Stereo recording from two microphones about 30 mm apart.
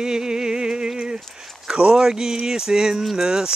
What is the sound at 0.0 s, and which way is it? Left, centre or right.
Music, right.